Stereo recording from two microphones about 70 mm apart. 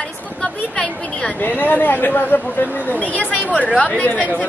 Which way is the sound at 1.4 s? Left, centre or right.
Left.